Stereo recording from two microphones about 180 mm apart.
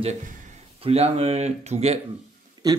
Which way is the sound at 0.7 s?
35° right (ahead or behind).